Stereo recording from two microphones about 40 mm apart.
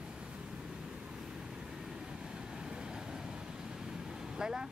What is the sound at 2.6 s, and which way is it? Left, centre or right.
Vehicle, centre.